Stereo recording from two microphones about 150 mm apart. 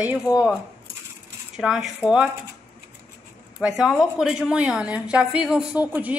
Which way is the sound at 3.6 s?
5° right (ahead or behind).